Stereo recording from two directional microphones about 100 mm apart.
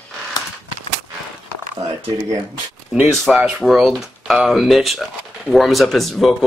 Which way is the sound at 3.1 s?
Centre (ahead or behind).